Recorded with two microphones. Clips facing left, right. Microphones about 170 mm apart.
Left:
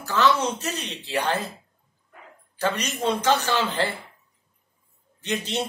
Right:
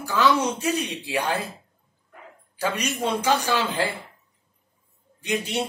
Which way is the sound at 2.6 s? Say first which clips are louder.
Left 1 dB; 10° right (ahead or behind).